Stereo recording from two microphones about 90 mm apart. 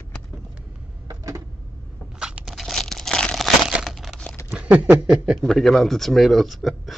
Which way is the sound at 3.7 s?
5° right (ahead or behind).